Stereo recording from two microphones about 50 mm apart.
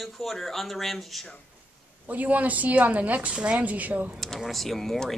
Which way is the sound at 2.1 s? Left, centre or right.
Right.